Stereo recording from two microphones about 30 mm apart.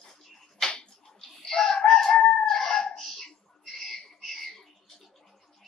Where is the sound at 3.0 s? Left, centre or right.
Centre.